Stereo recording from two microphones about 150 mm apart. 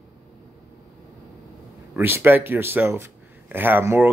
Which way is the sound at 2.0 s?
15° right (ahead or behind).